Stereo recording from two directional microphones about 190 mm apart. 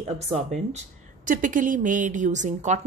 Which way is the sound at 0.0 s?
35° right (ahead or behind).